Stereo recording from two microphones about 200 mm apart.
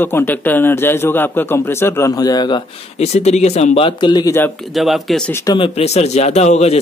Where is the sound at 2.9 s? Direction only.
30° left (ahead or behind); by 4.5 s 15° left (ahead or behind).